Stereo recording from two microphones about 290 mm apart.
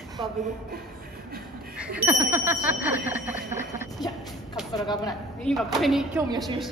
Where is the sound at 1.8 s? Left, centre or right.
Centre.